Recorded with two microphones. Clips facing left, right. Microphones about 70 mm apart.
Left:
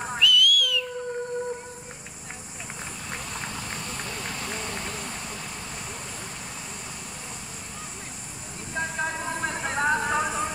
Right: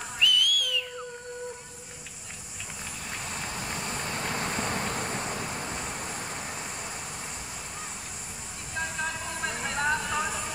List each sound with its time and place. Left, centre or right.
0.2 s a sound: right
3.5 s vehicle: right
8.7 s vehicle: left